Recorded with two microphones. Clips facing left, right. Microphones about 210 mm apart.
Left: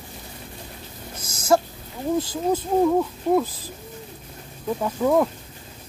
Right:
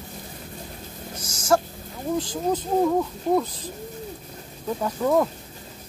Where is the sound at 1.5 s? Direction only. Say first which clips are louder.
Left 2 dB; 15° left (ahead or behind).